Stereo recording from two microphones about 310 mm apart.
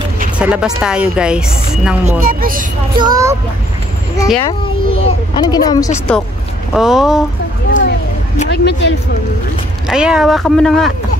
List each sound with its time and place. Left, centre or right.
0.4 s a woman's voice: centre
2.1 s a woman's voice: right
3.0 s a child's voice: centre
4.4 s a woman's voice: centre
8.4 s speech: left
9.8 s a woman's voice: centre